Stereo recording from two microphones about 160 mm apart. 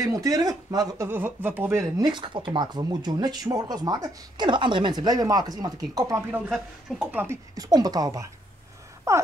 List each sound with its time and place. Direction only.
0.0 s speech: 20° right (ahead or behind)
2.0 s speech: 30° right (ahead or behind)
6.5 s speech: 5° right (ahead or behind)
7.5 s speech: 25° right (ahead or behind)